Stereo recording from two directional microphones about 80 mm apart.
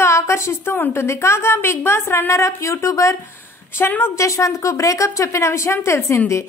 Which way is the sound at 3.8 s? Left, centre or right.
Left.